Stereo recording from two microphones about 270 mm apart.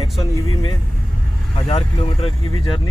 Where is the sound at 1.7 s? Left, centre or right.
Left.